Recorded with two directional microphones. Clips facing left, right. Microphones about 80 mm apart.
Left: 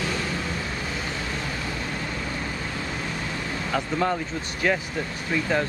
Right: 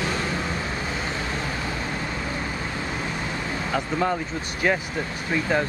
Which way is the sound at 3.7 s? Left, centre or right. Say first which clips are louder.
Even; centre.